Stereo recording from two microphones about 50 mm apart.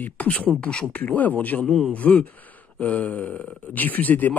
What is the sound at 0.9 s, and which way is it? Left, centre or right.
Speech, left.